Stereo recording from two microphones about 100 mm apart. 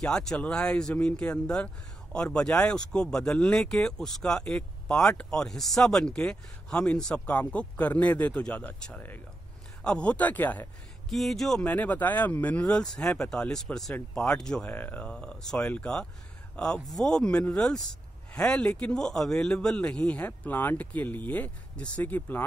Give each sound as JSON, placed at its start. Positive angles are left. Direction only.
{"t": 0.0, "sound": "speech", "side_deg": 5}
{"t": 11.1, "sound": "speech", "side_deg": 0}
{"t": 11.6, "sound": "speech", "side_deg": 15}
{"t": 14.7, "sound": "speech", "side_deg": 20}